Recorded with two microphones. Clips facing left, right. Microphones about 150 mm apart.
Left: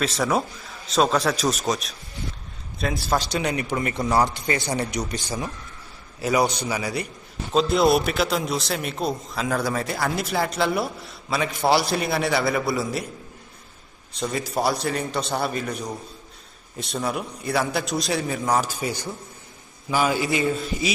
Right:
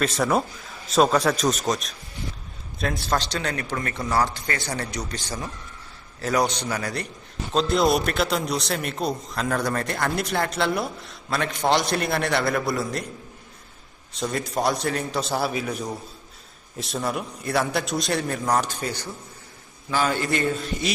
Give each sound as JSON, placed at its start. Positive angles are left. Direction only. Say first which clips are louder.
{"t": 0.0, "sound": "a man's voice", "louder": "right 1 dB", "side_deg": 0}
{"t": 14.1, "sound": "a man's voice", "louder": "even", "side_deg": 0}